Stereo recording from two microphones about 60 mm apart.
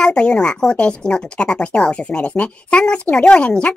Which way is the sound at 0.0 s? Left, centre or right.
Centre.